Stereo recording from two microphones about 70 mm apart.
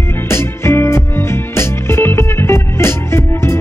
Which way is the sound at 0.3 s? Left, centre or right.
Left.